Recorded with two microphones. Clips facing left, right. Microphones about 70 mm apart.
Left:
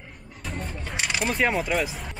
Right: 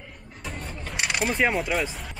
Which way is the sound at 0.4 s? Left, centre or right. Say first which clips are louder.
Left 2 dB; centre.